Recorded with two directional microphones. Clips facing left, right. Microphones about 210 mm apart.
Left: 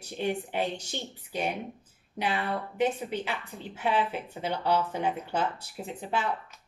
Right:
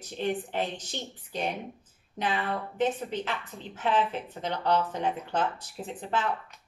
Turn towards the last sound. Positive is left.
turn(degrees=10)  # may be behind; listen again after turning